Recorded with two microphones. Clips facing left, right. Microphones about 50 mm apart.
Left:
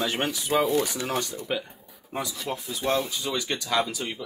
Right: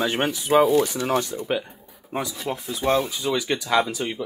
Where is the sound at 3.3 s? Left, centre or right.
Centre.